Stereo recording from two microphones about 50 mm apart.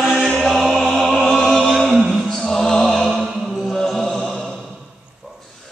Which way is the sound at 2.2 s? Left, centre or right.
Centre.